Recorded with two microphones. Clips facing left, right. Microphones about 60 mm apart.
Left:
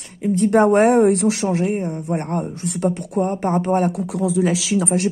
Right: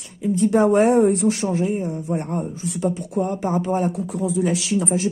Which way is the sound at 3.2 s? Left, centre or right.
Left.